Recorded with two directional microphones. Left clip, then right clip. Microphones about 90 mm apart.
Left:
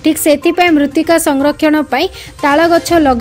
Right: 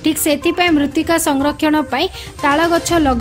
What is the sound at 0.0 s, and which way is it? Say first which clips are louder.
Speech: left 5 dB; 35° left (ahead or behind).